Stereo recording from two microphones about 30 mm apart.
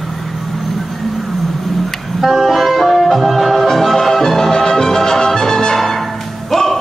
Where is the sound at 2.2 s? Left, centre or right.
Centre.